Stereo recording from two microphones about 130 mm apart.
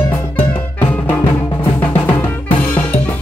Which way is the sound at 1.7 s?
15° left (ahead or behind).